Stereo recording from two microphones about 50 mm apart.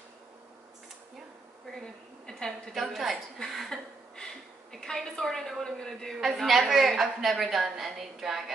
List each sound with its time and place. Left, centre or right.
1.7 s a sound: centre
3.5 s a woman's voice: centre
6.1 s a woman's voice: centre